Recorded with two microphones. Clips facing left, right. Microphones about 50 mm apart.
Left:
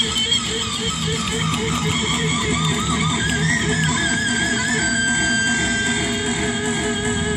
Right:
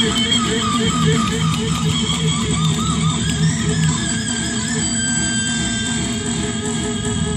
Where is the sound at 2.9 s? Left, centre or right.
Left.